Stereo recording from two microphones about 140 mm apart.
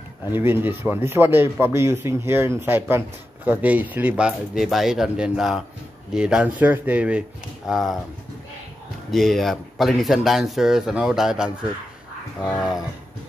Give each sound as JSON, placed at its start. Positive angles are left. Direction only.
{"t": 0.3, "sound": "a man's voice", "side_deg": -15}
{"t": 9.1, "sound": "speech", "side_deg": 0}